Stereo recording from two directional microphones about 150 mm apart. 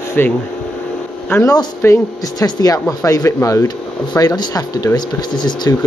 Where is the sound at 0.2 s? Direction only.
15° left (ahead or behind).